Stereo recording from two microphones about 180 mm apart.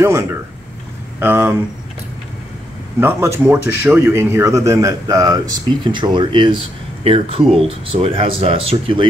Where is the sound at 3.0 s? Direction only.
15° right (ahead or behind).